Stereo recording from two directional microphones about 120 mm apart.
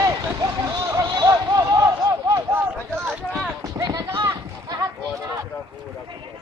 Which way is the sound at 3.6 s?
30° right (ahead or behind).